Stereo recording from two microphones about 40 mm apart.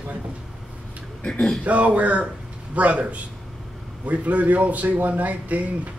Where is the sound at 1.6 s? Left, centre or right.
Right.